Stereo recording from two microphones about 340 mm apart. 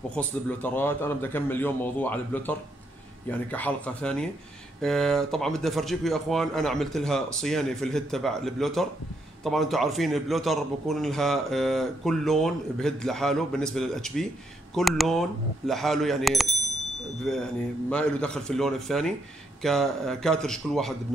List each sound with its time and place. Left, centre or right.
0.1 s a man's voice: centre